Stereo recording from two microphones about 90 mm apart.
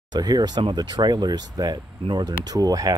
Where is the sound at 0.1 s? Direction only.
45° right (ahead or behind).